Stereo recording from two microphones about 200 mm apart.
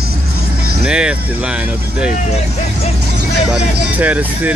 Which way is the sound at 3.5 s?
5° right (ahead or behind).